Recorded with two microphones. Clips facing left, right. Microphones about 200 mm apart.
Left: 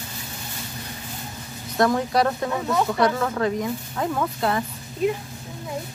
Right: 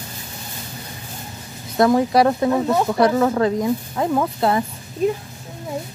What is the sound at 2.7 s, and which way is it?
Speech, 30° right (ahead or behind).